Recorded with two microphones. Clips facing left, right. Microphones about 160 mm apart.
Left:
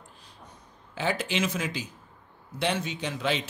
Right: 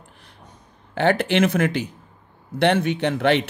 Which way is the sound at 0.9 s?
65° right (ahead or behind).